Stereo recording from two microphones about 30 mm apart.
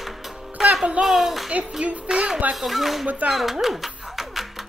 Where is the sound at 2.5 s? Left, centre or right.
Centre.